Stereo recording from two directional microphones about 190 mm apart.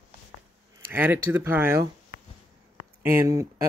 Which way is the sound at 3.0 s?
10° right (ahead or behind).